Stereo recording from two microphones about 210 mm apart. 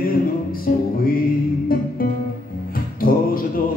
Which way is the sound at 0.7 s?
40° left (ahead or behind).